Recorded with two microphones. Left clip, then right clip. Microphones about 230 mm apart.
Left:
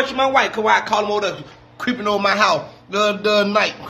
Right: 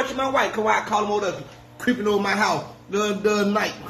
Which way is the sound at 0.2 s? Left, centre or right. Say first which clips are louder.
Left 6 dB; left.